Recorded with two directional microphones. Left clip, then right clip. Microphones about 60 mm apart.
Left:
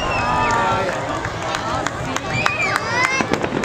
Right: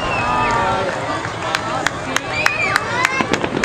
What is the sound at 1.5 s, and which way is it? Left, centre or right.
Run, right.